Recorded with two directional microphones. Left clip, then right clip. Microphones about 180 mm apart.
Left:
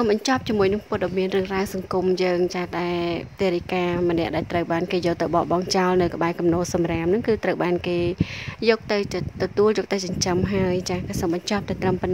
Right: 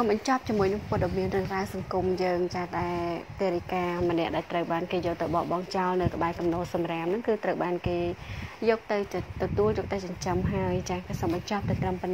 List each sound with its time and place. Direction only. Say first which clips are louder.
0.1 s a woman's voice: left 5 dB; 20° left (ahead or behind); by 3.5 s 40° left (ahead or behind)
3.7 s speech: left 5 dB; 30° left (ahead or behind)